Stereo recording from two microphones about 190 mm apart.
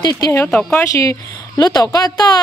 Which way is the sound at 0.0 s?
20° left (ahead or behind).